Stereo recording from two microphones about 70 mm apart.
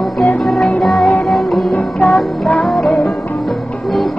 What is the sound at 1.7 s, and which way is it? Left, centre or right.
Music, left.